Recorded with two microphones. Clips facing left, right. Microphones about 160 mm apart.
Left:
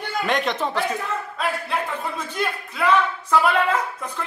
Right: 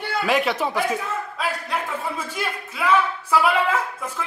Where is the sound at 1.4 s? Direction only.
Centre (ahead or behind).